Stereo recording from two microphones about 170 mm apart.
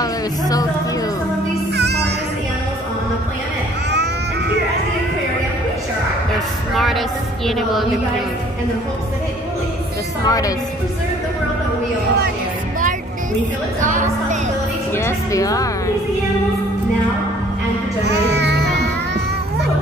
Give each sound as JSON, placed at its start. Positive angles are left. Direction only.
{"t": 0.0, "sound": "speech", "side_deg": 20}
{"t": 1.8, "sound": "music", "side_deg": -80}
{"t": 3.9, "sound": "baby cry", "side_deg": -85}
{"t": 6.7, "sound": "a woman's voice", "side_deg": 0}
{"t": 10.2, "sound": "a woman's voice", "side_deg": 20}
{"t": 13.7, "sound": "a woman's voice", "side_deg": -50}
{"t": 15.0, "sound": "a woman's voice", "side_deg": 15}
{"t": 18.0, "sound": "child singing", "side_deg": -85}